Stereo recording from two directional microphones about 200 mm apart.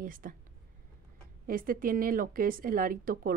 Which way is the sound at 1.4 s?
45° right (ahead or behind).